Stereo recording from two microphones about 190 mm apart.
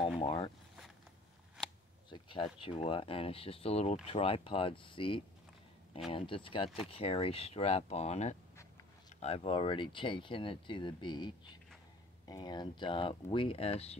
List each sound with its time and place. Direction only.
0.2 s speech: 30° left (ahead or behind)
2.0 s speech: 25° left (ahead or behind)